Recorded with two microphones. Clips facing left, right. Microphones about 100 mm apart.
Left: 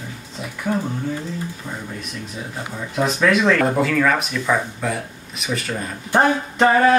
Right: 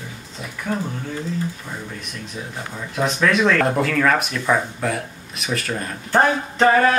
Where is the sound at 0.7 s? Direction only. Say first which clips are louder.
Left 3 dB; 10° left (ahead or behind).